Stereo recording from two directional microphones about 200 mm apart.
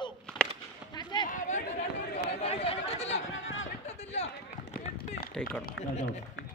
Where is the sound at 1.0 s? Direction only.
20° left (ahead or behind).